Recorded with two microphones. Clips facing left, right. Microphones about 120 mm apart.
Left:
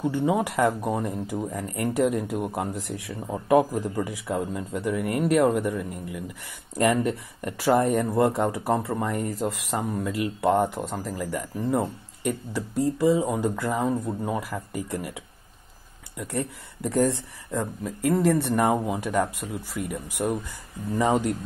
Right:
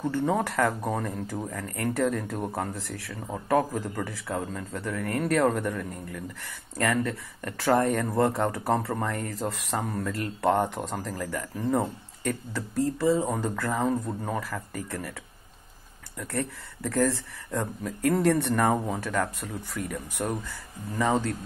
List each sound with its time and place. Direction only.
0.0 s speech: 10° left (ahead or behind)
16.2 s speech: 15° left (ahead or behind)
17.5 s speech: 5° left (ahead or behind)
18.5 s speech: 15° left (ahead or behind)
19.4 s speech: 5° left (ahead or behind)